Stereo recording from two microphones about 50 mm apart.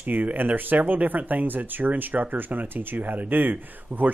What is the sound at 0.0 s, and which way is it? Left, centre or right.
Speech, right.